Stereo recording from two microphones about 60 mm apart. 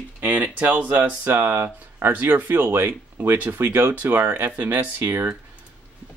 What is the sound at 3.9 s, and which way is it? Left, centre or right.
Speech, right.